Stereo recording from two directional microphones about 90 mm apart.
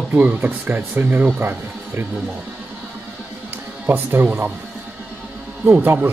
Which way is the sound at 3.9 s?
25° right (ahead or behind).